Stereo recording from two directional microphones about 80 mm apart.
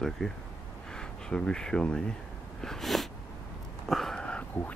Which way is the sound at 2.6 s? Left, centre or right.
Centre.